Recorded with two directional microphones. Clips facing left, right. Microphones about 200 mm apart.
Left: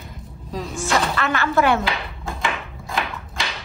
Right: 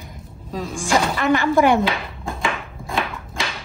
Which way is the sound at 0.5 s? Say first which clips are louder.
Right 1 dB; centre (ahead or behind).